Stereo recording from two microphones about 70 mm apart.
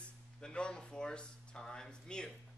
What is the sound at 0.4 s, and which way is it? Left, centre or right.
Speech, centre.